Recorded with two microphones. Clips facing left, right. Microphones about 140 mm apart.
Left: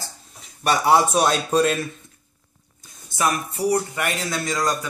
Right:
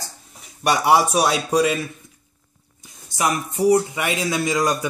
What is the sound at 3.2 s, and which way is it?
A man's voice, 15° right (ahead or behind).